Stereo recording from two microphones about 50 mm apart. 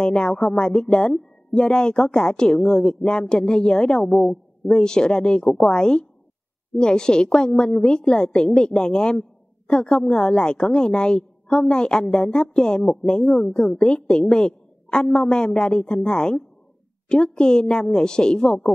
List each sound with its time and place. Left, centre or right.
0.0 s a woman's voice: centre